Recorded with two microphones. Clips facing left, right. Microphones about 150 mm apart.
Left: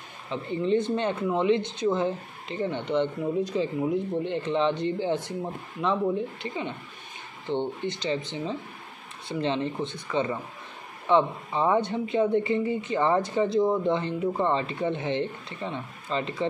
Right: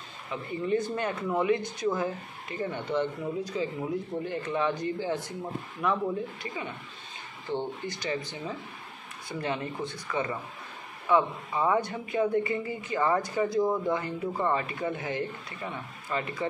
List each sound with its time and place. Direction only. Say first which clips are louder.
0.3 s speech: left 4 dB; 25° left (ahead or behind)